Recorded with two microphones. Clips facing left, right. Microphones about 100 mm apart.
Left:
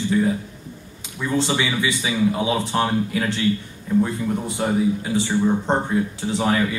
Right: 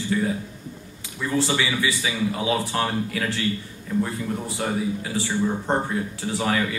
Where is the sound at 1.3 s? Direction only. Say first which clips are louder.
Left 2 dB; 20° left (ahead or behind).